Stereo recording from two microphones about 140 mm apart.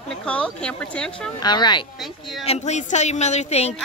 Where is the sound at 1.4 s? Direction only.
30° left (ahead or behind).